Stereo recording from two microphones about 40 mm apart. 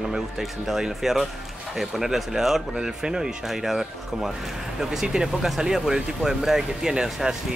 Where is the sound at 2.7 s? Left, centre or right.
Centre.